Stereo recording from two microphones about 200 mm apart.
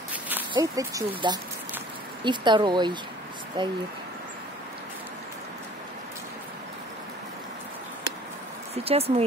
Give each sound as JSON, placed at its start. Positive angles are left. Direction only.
{"t": 0.5, "sound": "speech", "side_deg": -15}
{"t": 8.7, "sound": "speech", "side_deg": -30}